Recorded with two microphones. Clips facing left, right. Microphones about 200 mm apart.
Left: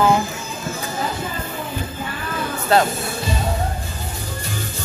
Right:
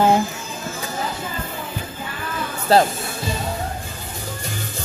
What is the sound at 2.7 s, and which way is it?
Speech, 35° right (ahead or behind).